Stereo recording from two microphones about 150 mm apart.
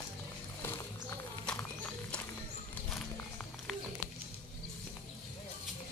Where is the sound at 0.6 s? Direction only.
20° left (ahead or behind).